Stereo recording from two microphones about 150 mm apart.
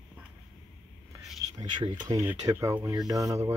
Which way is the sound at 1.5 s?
30° right (ahead or behind).